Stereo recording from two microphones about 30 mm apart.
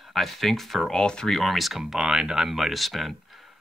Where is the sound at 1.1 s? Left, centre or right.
Left.